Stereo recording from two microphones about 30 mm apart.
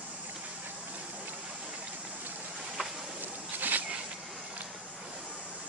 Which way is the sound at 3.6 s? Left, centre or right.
Right.